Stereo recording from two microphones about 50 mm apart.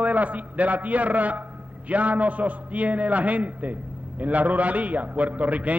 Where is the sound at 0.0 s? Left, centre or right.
Right.